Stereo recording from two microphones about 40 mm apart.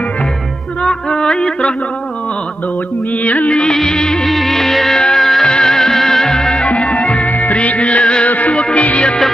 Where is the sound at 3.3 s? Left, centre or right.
Left.